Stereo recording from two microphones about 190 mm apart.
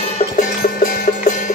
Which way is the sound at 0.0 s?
35° left (ahead or behind).